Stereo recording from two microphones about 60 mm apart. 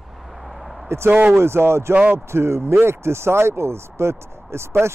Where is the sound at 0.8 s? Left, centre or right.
Right.